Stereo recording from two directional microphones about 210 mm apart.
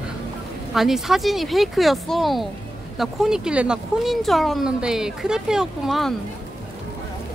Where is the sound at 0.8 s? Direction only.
Centre (ahead or behind).